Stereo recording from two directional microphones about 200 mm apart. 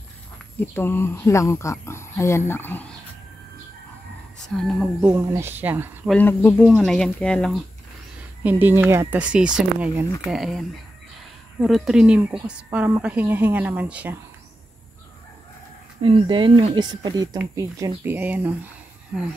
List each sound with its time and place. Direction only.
0.6 s speech: 10° left (ahead or behind)
4.4 s speech: centre (ahead or behind)
5.0 s speech: 10° right (ahead or behind)
6.1 s speech: 10° left (ahead or behind)
8.5 s speech: 10° right (ahead or behind)
11.6 s speech: centre (ahead or behind)
16.0 s speech: 25° right (ahead or behind); by 18.7 s 10° right (ahead or behind)